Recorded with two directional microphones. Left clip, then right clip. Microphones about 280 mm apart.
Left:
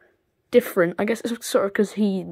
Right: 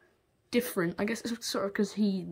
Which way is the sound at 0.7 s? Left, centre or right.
Left.